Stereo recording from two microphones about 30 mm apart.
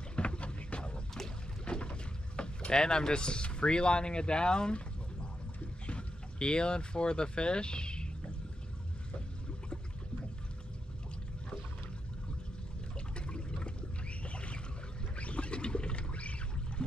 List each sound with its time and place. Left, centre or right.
0.1 s boat: left
1.7 s speech: left
5.9 s speech: left
13.1 s water: left
14.0 s boat: left
15.1 s duck: left